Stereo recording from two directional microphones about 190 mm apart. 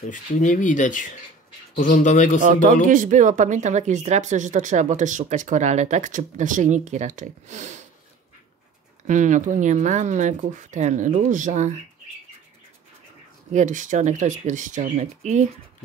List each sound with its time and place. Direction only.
0.1 s speech: 40° left (ahead or behind)
2.9 s speech: 45° right (ahead or behind)
9.0 s speech: 40° right (ahead or behind)
13.5 s speech: 40° right (ahead or behind)